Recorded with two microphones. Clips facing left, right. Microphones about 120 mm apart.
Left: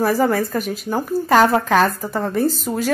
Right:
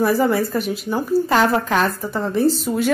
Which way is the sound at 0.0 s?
40° left (ahead or behind).